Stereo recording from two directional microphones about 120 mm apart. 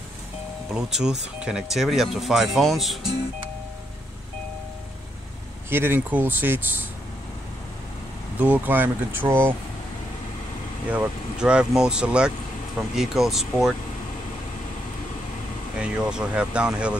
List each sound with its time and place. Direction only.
0.7 s speech: 5° right (ahead or behind)
5.7 s speech: 20° right (ahead or behind)
8.4 s speech: 15° right (ahead or behind)
10.9 s speech: 10° right (ahead or behind)
15.8 s speech: 10° right (ahead or behind)